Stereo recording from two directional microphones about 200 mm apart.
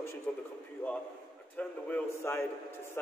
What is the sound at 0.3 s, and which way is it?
Speech, 10° left (ahead or behind).